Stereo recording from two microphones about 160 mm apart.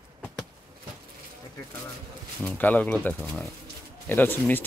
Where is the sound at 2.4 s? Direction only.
10° left (ahead or behind).